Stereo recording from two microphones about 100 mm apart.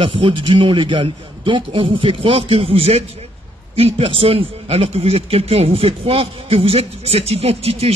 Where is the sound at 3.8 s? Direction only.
70° right (ahead or behind).